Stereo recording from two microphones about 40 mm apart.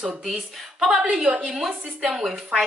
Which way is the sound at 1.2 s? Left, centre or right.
Right.